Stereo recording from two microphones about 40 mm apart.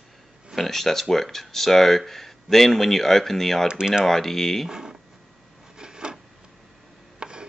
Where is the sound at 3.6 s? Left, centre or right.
Centre.